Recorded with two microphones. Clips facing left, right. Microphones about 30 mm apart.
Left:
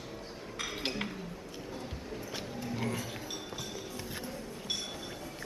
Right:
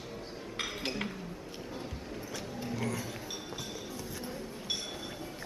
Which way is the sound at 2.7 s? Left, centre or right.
Centre.